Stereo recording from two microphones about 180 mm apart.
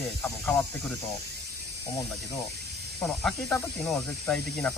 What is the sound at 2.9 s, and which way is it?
Speech, 10° left (ahead or behind).